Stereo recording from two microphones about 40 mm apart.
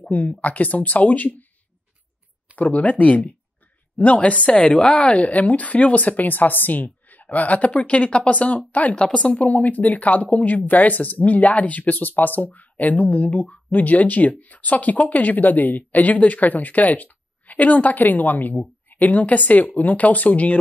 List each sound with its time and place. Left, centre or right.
0.1 s speech: left
2.5 s speech: left
8.9 s speech: left
9.2 s speech: left